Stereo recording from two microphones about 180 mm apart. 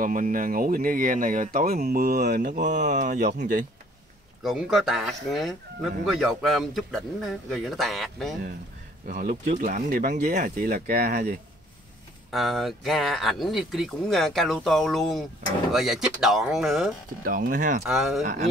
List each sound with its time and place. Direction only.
0.0 s speech: 50° right (ahead or behind)
2.3 s speech: 45° right (ahead or behind)
4.4 s speech: centre (ahead or behind)
9.0 s speech: 50° right (ahead or behind)
12.3 s speech: centre (ahead or behind)
17.2 s speech: 50° right (ahead or behind)
17.8 s speech: centre (ahead or behind)
18.2 s speech: 40° right (ahead or behind)